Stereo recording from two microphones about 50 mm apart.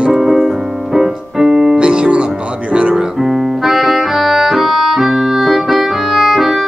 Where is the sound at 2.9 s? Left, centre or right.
Centre.